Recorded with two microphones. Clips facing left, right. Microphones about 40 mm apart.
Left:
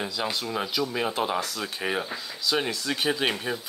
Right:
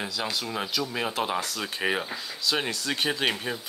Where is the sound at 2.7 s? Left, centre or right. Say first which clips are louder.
Left 1 dB; centre.